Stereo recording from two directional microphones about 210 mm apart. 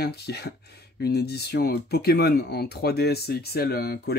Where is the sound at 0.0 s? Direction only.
50° left (ahead or behind).